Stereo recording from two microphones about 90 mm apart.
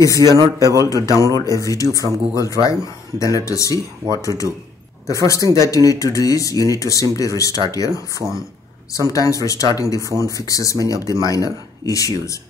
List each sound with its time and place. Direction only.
0.8 s speech: 40° left (ahead or behind)